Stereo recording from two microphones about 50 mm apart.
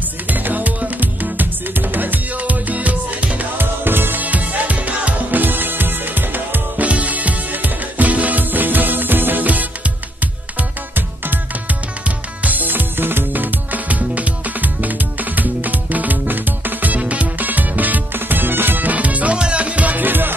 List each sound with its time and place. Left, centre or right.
0.3 s music: right
3.5 s music: right
6.9 s music: right
12.4 s music: right